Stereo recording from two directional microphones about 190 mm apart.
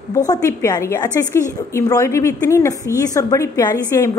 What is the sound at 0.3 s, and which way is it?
A woman's voice, 15° left (ahead or behind).